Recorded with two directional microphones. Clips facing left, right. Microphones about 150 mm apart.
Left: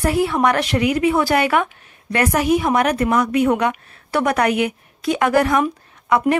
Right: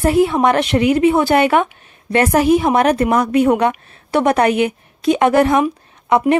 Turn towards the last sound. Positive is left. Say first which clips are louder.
# right 3 dB
turn(degrees=-25)  # may be behind; listen again after turning